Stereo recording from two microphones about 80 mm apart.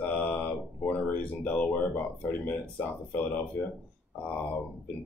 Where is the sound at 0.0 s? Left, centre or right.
Left.